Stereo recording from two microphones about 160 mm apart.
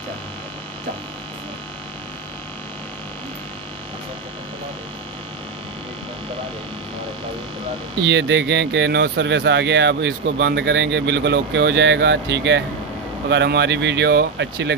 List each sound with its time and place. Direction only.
8.0 s speech: 90° right